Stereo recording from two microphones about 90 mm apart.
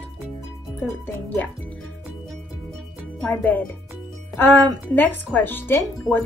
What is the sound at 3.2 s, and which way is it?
Speech, 15° left (ahead or behind).